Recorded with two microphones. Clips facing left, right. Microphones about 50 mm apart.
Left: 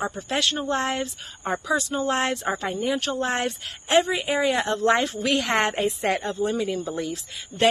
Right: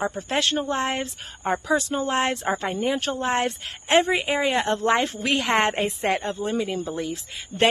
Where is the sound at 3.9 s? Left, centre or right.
Right.